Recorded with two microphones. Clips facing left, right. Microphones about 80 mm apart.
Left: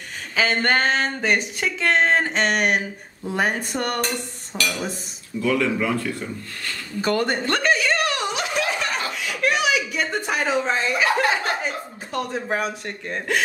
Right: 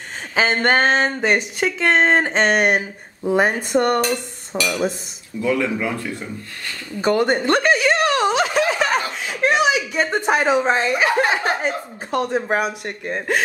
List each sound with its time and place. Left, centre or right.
0.4 s speech: right
4.0 s dishes: centre
7.0 s chuckle: right
9.2 s a sound: right
10.9 s speech: right